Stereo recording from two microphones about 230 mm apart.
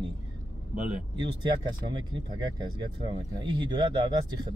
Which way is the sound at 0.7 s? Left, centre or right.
Centre.